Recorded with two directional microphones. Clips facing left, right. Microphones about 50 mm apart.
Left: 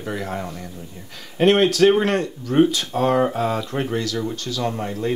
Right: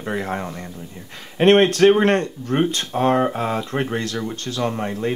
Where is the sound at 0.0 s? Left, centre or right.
Right.